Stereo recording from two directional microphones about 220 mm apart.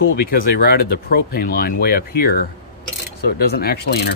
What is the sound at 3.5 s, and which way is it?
Speech, 45° left (ahead or behind).